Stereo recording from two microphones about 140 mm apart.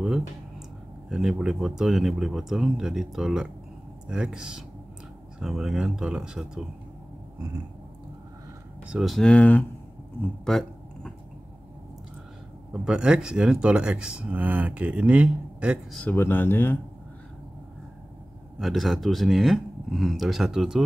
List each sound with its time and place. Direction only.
1.1 s speech: 5° right (ahead or behind)
8.8 s speech: 5° right (ahead or behind)
10.2 s a sound: 5° left (ahead or behind)
12.7 s speech: 5° right (ahead or behind)
16.0 s speech: 15° left (ahead or behind)
18.6 s speech: centre (ahead or behind)